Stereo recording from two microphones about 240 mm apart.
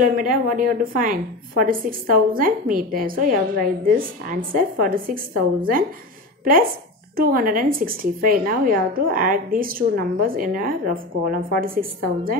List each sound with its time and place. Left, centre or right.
0.0 s a woman's voice: right
7.2 s a woman's voice: right